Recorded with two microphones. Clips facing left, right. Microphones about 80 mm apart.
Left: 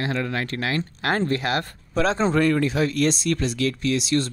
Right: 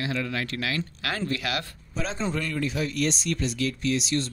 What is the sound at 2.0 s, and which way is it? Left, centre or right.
Speech, left.